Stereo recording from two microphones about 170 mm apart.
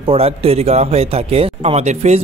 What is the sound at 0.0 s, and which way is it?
Speech, 35° right (ahead or behind).